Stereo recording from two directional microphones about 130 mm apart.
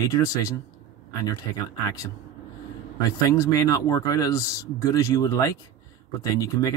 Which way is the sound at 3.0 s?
25° left (ahead or behind).